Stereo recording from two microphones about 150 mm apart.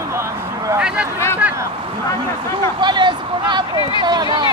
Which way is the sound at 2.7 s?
30° right (ahead or behind).